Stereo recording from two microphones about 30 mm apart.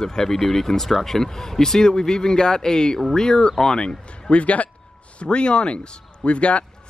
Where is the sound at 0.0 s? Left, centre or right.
Centre.